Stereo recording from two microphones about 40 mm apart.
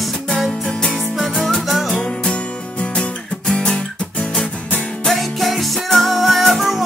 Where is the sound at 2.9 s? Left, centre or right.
Centre.